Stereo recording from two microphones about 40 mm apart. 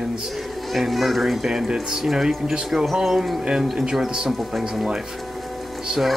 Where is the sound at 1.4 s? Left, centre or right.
Centre.